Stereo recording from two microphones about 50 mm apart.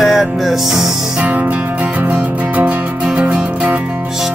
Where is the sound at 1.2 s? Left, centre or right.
Right.